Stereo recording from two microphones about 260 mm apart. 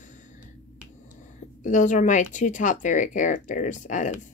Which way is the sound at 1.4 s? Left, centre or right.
Left.